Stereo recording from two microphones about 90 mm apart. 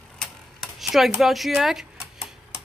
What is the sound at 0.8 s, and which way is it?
Speech, 5° right (ahead or behind).